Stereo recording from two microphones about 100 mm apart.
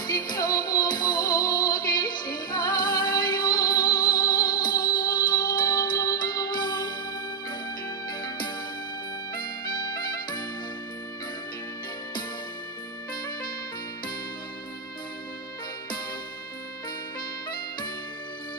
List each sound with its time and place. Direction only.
0.0 s music: 40° left (ahead or behind)
8.1 s music: 45° left (ahead or behind)